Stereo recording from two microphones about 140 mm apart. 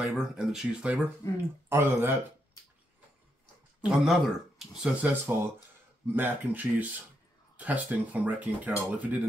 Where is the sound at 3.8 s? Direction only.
Centre (ahead or behind).